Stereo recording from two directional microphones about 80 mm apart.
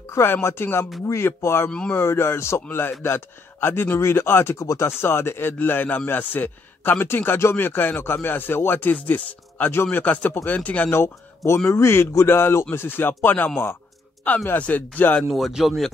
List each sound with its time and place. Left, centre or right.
0.1 s a man's voice: left
10.9 s a man's voice: left
15.3 s speech: centre